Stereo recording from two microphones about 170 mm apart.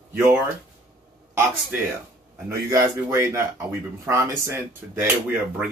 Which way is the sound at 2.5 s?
20° right (ahead or behind).